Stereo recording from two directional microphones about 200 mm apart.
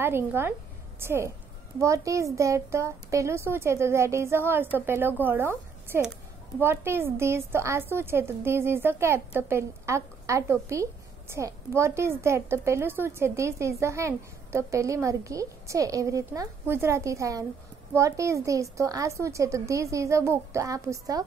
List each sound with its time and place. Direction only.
0.0 s a woman's voice: 10° right (ahead or behind)